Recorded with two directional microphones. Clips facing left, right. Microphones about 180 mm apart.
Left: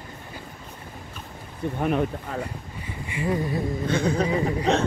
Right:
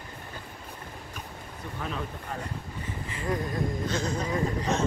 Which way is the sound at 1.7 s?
65° left (ahead or behind).